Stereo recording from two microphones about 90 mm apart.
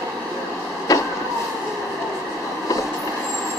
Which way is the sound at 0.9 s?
35° left (ahead or behind).